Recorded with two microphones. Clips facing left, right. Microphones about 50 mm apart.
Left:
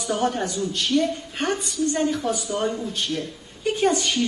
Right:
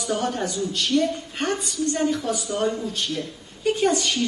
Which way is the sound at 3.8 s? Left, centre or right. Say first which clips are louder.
Left 2 dB; centre.